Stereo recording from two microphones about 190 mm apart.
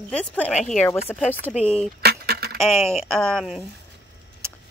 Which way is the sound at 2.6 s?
Centre (ahead or behind).